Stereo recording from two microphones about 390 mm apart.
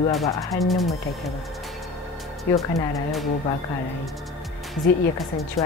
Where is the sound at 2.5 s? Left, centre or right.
Centre.